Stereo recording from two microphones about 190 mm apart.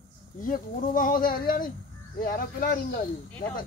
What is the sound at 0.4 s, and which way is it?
Speech, 45° left (ahead or behind).